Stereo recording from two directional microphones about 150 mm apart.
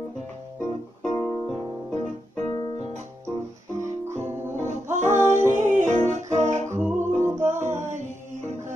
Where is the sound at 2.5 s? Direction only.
30° left (ahead or behind).